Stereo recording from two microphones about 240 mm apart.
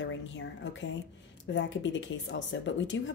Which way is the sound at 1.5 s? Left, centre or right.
Left.